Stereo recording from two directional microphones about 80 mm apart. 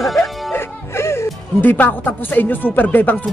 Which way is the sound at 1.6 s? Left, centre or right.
Left.